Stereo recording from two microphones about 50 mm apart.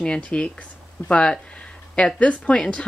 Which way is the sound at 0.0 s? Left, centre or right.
Left.